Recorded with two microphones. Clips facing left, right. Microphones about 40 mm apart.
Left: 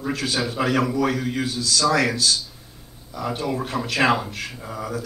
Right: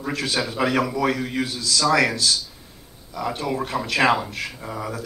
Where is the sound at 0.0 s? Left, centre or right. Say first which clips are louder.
Even; centre.